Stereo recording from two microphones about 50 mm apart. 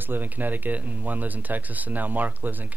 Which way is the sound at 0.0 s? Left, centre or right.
Right.